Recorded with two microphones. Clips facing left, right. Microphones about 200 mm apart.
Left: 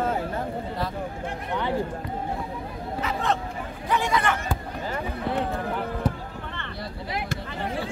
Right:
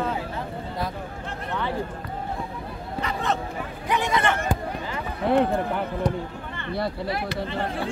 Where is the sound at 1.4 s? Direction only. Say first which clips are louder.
Left 1 dB; 15° left (ahead or behind).